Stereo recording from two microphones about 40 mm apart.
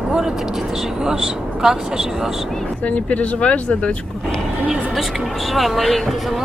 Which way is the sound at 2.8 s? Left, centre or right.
Left.